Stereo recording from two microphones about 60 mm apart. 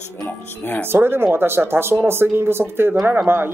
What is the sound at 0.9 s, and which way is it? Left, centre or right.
Speech, right.